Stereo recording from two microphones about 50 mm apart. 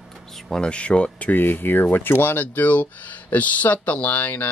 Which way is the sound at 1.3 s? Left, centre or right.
Left.